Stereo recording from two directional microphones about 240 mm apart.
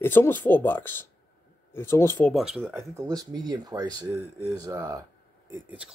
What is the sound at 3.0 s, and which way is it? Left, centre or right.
Speech, centre.